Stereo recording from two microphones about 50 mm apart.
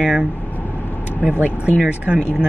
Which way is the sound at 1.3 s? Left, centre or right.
Right.